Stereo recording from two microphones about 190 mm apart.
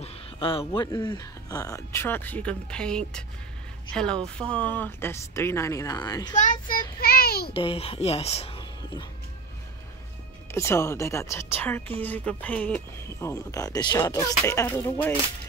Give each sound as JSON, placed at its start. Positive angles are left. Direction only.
{"t": 0.0, "sound": "speech", "side_deg": 30}
{"t": 6.3, "sound": "a child's voice", "side_deg": 40}
{"t": 7.5, "sound": "speech", "side_deg": 30}
{"t": 10.5, "sound": "speech", "side_deg": 15}